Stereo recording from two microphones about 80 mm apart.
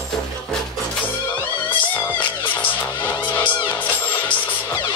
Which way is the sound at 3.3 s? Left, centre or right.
Left.